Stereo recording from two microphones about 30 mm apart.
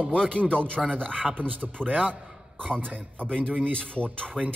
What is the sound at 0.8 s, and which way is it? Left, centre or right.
Speech, right.